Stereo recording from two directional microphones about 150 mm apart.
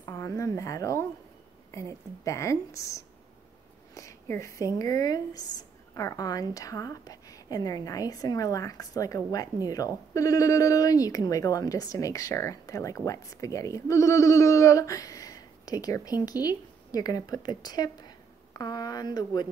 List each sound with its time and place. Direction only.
0.0 s a woman's voice: 20° left (ahead or behind)